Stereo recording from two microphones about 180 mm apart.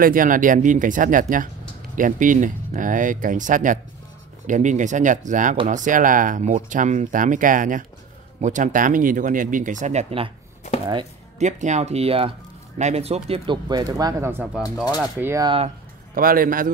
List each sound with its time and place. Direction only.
0.0 s speech: 50° right (ahead or behind)
11.3 s speech: 40° right (ahead or behind); by 15.4 s 10° right (ahead or behind)
15.4 s speech: 30° right (ahead or behind)
16.2 s speech: 50° right (ahead or behind)